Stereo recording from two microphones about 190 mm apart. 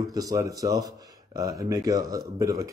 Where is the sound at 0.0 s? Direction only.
20° right (ahead or behind).